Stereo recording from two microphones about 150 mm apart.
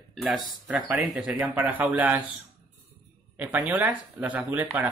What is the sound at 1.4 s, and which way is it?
Speech, 10° right (ahead or behind).